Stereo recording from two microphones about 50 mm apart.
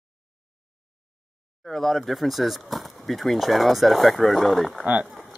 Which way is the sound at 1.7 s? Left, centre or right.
Centre.